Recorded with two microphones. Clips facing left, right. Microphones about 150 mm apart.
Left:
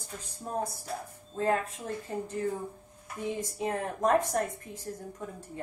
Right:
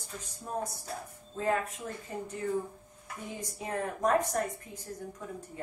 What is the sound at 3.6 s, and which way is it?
Speech, 30° left (ahead or behind).